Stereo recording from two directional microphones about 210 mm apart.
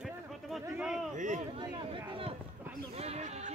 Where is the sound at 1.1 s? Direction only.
35° right (ahead or behind).